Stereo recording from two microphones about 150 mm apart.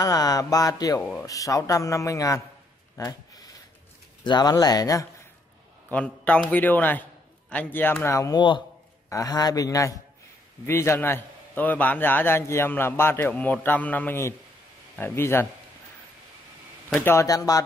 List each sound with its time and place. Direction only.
0.0 s a man's voice: 25° left (ahead or behind)
3.0 s a sound: 25° left (ahead or behind)
4.2 s a man's voice: 30° left (ahead or behind)
5.9 s a man's voice: 10° left (ahead or behind)
17.0 s a man's voice: 20° left (ahead or behind)